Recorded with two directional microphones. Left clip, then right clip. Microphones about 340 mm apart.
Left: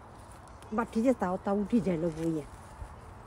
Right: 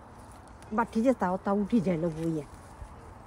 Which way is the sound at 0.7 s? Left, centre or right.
Centre.